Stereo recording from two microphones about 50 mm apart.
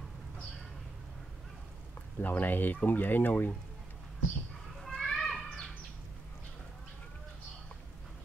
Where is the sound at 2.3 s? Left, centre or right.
Left.